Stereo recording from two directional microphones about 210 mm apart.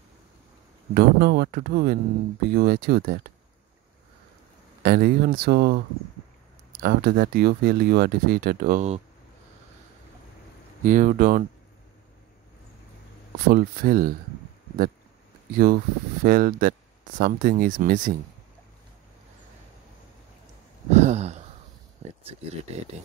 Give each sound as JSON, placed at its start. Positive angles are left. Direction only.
{"t": 0.9, "sound": "speech", "side_deg": -50}
{"t": 4.8, "sound": "speech", "side_deg": -45}
{"t": 6.8, "sound": "speech", "side_deg": -45}
{"t": 10.8, "sound": "speech", "side_deg": -40}
{"t": 13.5, "sound": "speech", "side_deg": -45}
{"t": 15.5, "sound": "speech", "side_deg": -45}
{"t": 20.9, "sound": "a sound", "side_deg": -35}